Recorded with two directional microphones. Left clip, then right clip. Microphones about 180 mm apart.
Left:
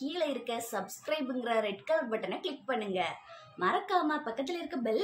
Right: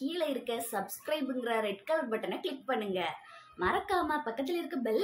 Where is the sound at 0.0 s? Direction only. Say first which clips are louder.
Even; centre (ahead or behind).